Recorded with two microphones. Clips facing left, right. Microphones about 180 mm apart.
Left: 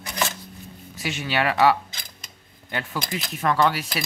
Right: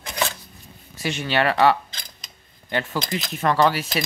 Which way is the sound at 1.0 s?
Centre (ahead or behind).